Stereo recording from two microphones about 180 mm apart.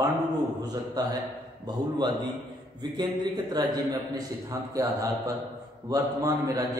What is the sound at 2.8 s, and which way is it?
A man's voice, 25° right (ahead or behind).